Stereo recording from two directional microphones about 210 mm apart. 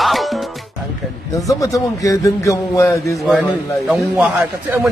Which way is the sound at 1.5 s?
15° left (ahead or behind).